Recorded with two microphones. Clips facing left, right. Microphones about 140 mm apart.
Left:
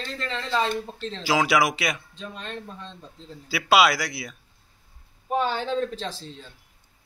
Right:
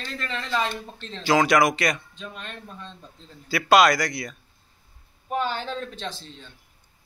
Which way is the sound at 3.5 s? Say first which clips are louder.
Right 2 dB; 5° left (ahead or behind).